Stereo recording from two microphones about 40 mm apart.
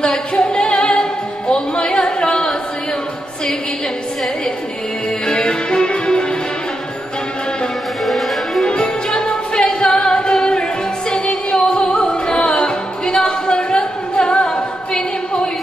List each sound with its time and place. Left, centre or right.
0.0 s a capella: centre
1.5 s a sound: centre
5.2 s music: centre
8.0 s music: centre
8.6 s music: left